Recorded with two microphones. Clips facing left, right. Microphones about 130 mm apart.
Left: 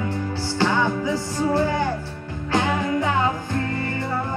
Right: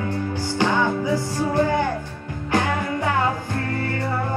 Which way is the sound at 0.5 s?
15° right (ahead or behind).